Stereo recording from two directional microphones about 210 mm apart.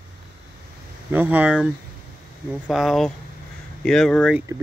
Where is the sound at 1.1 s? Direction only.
10° right (ahead or behind).